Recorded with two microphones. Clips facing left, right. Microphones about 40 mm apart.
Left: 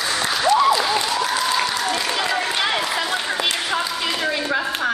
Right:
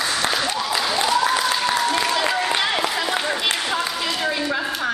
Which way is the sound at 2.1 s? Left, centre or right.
Centre.